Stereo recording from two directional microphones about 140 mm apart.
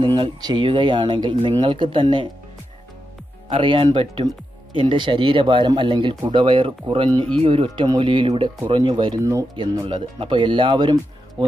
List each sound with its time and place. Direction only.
0.0 s speech: 35° right (ahead or behind)
3.4 s speech: 40° right (ahead or behind)
9.2 s speech: 20° right (ahead or behind)
9.6 s speech: 35° right (ahead or behind)